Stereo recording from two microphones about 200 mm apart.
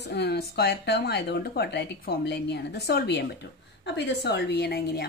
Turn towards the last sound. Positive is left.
turn(degrees=55)  # may be behind; listen again after turning